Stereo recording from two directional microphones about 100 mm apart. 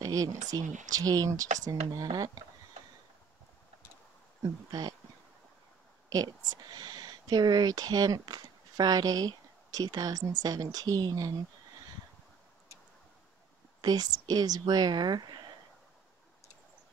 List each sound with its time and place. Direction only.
0.0 s speech: 35° right (ahead or behind)
4.4 s speech: 40° right (ahead or behind)
6.0 s speech: 40° right (ahead or behind)
13.7 s a woman's voice: 45° right (ahead or behind)